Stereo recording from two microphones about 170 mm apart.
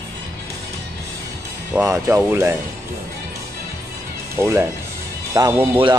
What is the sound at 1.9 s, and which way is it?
Speech, 15° right (ahead or behind).